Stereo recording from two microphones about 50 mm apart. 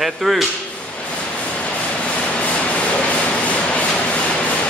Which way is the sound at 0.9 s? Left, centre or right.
Left.